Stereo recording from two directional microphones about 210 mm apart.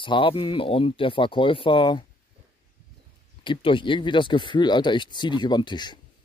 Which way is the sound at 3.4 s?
25° left (ahead or behind).